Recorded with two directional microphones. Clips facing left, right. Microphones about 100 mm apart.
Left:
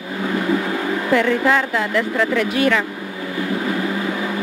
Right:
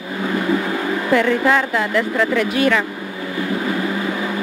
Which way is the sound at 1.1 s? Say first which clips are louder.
Right 1 dB; 20° right (ahead or behind).